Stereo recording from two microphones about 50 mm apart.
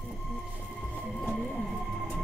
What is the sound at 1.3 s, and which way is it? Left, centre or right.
Music, centre.